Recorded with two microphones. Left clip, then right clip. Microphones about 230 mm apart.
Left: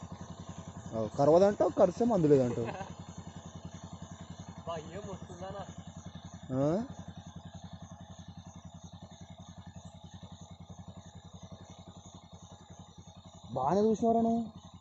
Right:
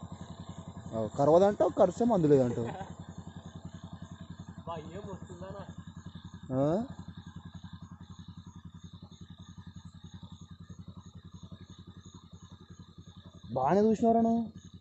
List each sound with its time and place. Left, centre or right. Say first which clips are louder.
0.0 s vehicle: even; left
0.9 s speech: right 1 dB; centre
2.6 s a sound: even; left
4.6 s a sound: left 1 dB; left
6.5 s speech: right 2 dB; centre
13.5 s speech: right 2 dB; centre